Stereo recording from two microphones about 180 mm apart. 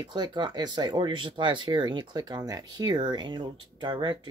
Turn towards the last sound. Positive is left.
turn(degrees=-25)  # may be behind; listen again after turning